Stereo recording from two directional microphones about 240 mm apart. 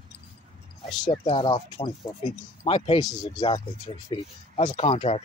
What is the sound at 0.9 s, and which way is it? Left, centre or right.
Speech, left.